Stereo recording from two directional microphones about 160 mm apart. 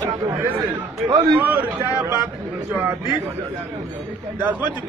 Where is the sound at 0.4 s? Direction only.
10° right (ahead or behind).